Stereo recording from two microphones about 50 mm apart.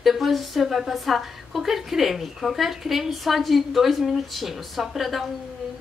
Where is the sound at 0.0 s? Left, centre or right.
Centre.